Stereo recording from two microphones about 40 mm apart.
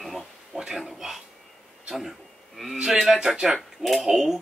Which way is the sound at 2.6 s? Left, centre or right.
Centre.